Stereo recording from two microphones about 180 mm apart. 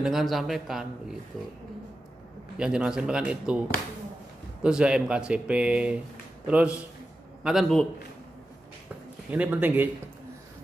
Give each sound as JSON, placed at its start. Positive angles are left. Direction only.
{"t": 0.0, "sound": "speech", "side_deg": 0}
{"t": 2.5, "sound": "speech", "side_deg": -5}
{"t": 4.6, "sound": "a man's voice", "side_deg": -5}
{"t": 9.3, "sound": "speech", "side_deg": -10}